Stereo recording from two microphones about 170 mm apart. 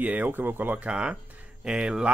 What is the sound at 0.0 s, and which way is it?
Speech, 10° right (ahead or behind).